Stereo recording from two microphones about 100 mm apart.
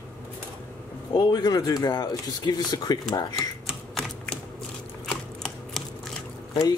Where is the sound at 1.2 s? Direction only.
45° left (ahead or behind).